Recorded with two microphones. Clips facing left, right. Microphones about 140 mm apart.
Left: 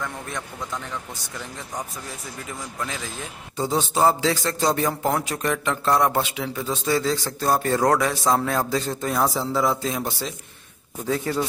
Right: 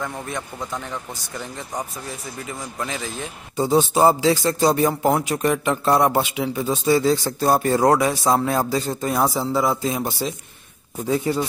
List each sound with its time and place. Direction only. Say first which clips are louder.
2.4 s a man's voice: right 2 dB; centre (ahead or behind)